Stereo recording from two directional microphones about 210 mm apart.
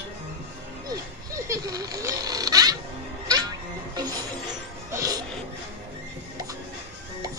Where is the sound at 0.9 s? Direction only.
15° right (ahead or behind).